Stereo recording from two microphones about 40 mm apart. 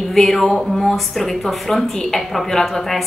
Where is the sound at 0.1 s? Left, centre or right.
Centre.